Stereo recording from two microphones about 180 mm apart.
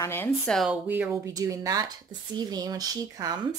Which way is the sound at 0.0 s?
10° left (ahead or behind).